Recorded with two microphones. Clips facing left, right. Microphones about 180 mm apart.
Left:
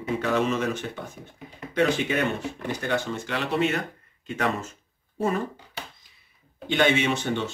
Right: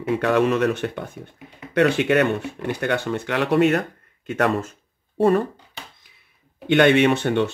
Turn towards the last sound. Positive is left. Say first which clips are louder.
# right 8 dB
turn(degrees=-60)  # may be behind; listen again after turning